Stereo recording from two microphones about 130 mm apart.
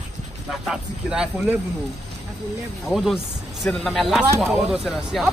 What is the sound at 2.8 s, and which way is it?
A man's voice, centre (ahead or behind).